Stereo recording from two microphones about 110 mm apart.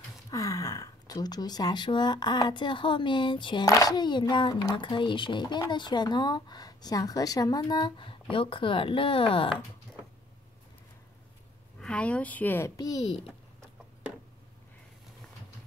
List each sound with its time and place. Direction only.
0.3 s speech: 30° left (ahead or behind); by 3.6 s 45° left (ahead or behind)
3.6 s a child's voice: 35° left (ahead or behind); by 9.5 s 55° left (ahead or behind)
11.8 s a woman's voice: 10° left (ahead or behind)
12.7 s a child's voice: 35° left (ahead or behind)